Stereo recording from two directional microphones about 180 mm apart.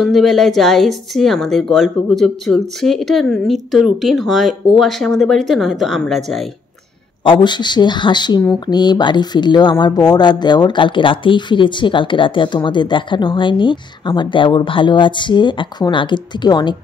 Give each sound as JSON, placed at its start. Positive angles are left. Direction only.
{"t": 0.0, "sound": "speech", "side_deg": 0}
{"t": 7.2, "sound": "speech", "side_deg": 25}